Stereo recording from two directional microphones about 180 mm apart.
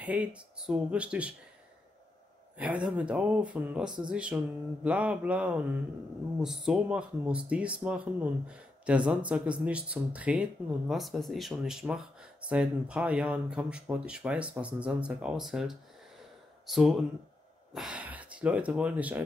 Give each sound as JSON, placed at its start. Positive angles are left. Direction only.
{"t": 0.0, "sound": "speech", "side_deg": -5}
{"t": 2.5, "sound": "speech", "side_deg": -5}